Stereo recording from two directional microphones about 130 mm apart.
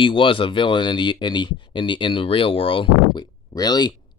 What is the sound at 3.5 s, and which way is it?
Speech, 30° left (ahead or behind).